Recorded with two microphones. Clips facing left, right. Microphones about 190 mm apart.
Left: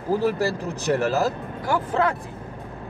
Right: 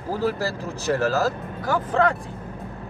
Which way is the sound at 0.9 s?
20° left (ahead or behind).